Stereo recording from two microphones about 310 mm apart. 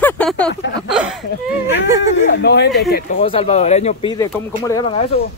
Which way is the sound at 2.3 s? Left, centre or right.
Left.